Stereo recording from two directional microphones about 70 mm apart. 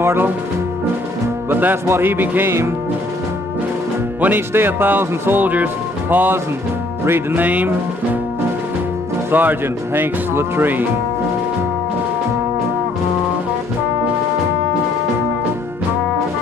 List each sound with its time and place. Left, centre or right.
0.0 s music: right
1.5 s speech: right
4.2 s speech: right
9.3 s speech: right